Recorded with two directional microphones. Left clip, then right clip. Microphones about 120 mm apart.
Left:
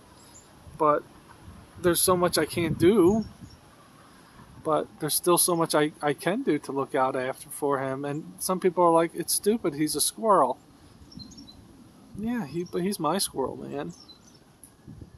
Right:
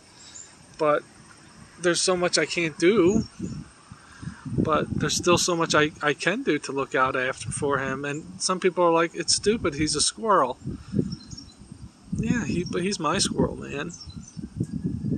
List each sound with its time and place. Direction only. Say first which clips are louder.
0.7 s speech: even; 10° left (ahead or behind)
4.6 s speech: right 1 dB; 15° left (ahead or behind)
12.2 s speech: right 4 dB; 10° left (ahead or behind)